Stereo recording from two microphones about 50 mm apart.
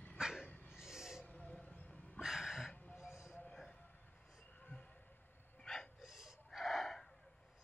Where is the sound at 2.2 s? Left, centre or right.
Centre.